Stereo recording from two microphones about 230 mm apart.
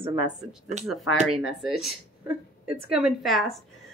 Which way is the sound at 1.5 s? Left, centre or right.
Centre.